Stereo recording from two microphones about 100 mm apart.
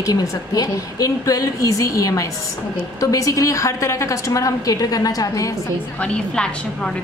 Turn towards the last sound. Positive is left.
turn(degrees=10)  # may be behind; listen again after turning